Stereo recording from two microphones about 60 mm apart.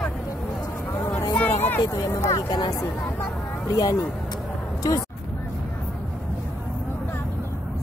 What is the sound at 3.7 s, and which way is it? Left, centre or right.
Speech, left.